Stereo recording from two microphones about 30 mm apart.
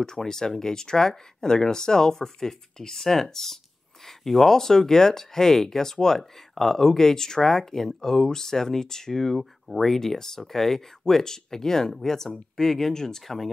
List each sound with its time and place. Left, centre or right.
0.0 s speech: centre
9.9 s speech: centre